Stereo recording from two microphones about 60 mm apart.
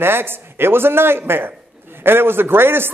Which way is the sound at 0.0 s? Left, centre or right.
Right.